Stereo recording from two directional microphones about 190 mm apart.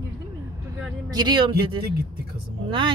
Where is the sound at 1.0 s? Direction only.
20° right (ahead or behind).